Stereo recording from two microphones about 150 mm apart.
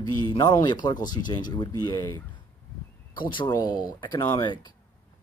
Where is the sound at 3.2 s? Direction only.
30° left (ahead or behind).